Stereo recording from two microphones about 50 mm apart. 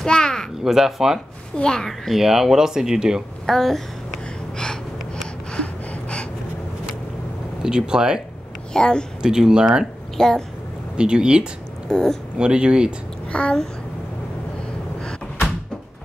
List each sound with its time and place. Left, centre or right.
0.0 s speech: centre
0.7 s speech: centre
1.6 s speech: centre
1.9 s speech: centre
3.4 s gasp: centre
5.5 s a sound: left
7.6 s speech: centre
8.7 s speech: centre
9.2 s speech: centre
10.1 s a woman's voice: centre
11.0 s speech: centre
11.9 s speech: centre
12.4 s speech: centre
13.3 s a child's voice: centre